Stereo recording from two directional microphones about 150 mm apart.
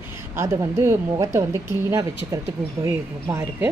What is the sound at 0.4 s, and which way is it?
Speech, 15° right (ahead or behind).